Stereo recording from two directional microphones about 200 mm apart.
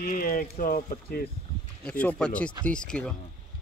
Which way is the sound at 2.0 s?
5° left (ahead or behind).